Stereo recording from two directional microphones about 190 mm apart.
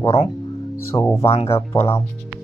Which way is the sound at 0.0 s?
30° left (ahead or behind).